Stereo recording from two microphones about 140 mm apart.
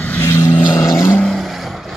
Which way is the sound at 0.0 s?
15° left (ahead or behind).